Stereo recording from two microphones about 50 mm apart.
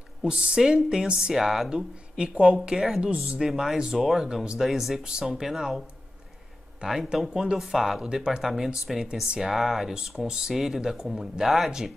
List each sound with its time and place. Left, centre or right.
0.2 s a woman's voice: centre
1.3 s speech: centre
1.7 s speech: centre
6.9 s speech: centre